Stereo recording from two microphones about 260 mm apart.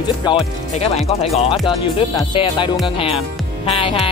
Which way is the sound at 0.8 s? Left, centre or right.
Left.